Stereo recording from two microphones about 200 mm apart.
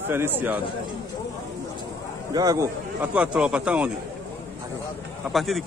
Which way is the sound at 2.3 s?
15° right (ahead or behind).